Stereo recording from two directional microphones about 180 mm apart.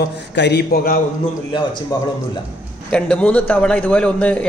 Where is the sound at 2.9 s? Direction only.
5° left (ahead or behind).